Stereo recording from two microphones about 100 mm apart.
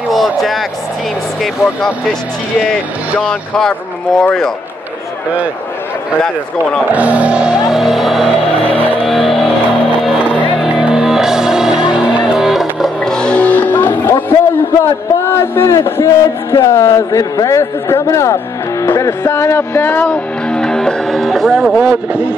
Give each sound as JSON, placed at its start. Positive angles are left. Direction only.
{"t": 0.1, "sound": "a sound", "side_deg": 0}
{"t": 3.2, "sound": "speech", "side_deg": 5}
{"t": 6.9, "sound": "speech", "side_deg": -15}
{"t": 9.0, "sound": "vehicle", "side_deg": 0}
{"t": 10.6, "sound": "music", "side_deg": -5}
{"t": 21.7, "sound": "a man's voice", "side_deg": -15}